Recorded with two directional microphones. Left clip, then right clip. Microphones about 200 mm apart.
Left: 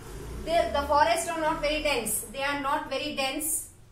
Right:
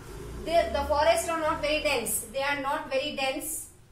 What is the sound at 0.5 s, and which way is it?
A woman's voice, centre (ahead or behind).